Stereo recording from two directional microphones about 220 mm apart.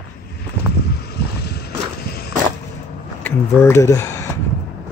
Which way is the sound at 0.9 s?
45° left (ahead or behind).